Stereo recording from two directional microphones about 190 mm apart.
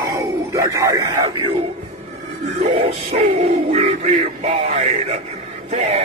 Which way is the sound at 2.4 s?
35° right (ahead or behind).